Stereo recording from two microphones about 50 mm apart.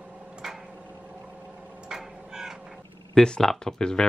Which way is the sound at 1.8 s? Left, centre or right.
Centre.